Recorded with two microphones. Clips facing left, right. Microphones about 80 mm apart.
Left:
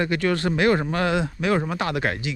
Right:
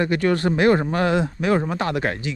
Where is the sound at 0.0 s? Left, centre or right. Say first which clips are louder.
Right 3 dB; right.